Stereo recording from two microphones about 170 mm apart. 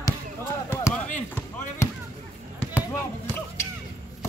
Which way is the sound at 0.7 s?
15° left (ahead or behind).